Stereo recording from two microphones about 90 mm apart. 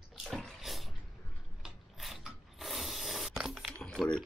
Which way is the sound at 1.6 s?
5° right (ahead or behind).